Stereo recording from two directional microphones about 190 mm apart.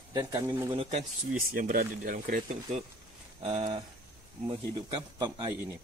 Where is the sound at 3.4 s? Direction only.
35° right (ahead or behind).